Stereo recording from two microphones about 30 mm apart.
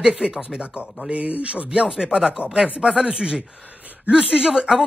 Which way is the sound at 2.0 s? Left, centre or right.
Right.